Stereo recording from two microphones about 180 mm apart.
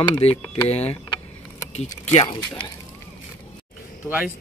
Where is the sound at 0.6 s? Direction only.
35° left (ahead or behind).